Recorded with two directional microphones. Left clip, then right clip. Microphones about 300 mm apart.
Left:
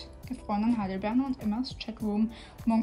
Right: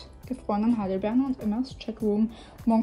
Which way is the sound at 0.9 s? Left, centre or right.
Centre.